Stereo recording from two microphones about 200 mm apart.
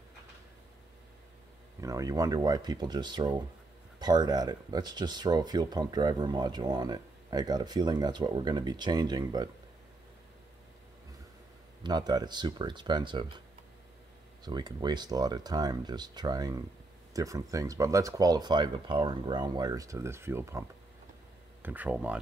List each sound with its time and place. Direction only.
1.8 s speech: 15° right (ahead or behind)
11.8 s speech: 20° right (ahead or behind)
14.4 s speech: 20° right (ahead or behind)
21.6 s speech: 10° right (ahead or behind)